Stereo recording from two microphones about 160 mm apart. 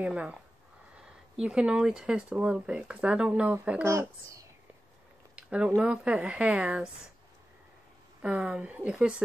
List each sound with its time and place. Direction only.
0.0 s speech: 5° right (ahead or behind)
5.3 s a sound: 5° right (ahead or behind)
5.8 s speech: 5° right (ahead or behind)
8.2 s speech: 5° right (ahead or behind)